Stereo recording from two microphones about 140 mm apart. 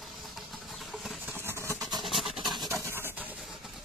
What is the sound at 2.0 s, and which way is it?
Vehicle, centre (ahead or behind).